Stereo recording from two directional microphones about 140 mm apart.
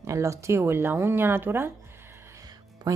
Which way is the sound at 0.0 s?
20° right (ahead or behind).